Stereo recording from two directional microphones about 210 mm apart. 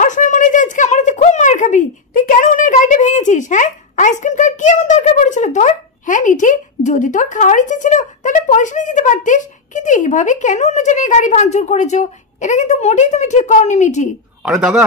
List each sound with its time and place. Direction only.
0.0 s speech: 35° left (ahead or behind)
14.4 s speech: 5° right (ahead or behind)